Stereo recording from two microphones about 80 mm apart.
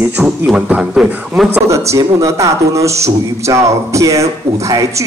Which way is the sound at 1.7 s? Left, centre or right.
Right.